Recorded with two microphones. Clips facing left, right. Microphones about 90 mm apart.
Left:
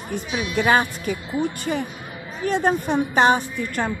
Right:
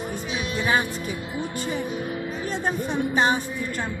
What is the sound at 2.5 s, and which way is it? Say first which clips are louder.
A woman's voice: left 8 dB; 70° left (ahead or behind).